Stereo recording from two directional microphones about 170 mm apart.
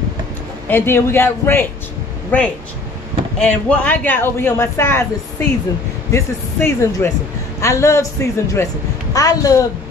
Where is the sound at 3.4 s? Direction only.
5° left (ahead or behind).